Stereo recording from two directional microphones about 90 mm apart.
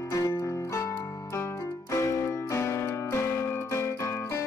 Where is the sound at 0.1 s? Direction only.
35° left (ahead or behind).